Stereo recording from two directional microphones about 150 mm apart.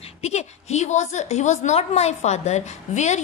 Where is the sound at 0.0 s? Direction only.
45° left (ahead or behind).